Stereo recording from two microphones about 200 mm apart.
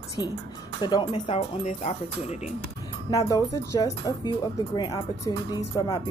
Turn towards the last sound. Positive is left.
turn(degrees=20)  # may be behind; listen again after turning